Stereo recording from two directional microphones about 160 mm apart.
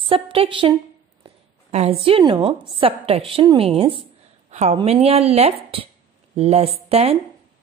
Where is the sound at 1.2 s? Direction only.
40° right (ahead or behind).